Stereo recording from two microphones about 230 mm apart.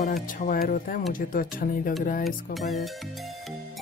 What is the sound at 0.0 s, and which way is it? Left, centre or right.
Speech, left.